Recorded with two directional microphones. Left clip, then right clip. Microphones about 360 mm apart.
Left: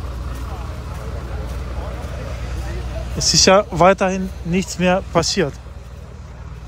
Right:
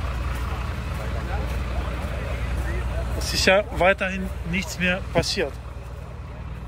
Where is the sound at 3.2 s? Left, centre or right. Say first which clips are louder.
Left 7 dB; centre.